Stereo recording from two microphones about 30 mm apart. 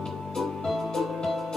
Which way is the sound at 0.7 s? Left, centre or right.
Centre.